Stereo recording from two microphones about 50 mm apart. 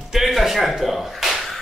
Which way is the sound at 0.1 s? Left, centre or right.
Centre.